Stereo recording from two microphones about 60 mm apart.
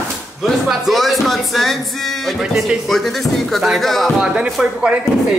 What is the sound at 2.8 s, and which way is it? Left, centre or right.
Speech, centre.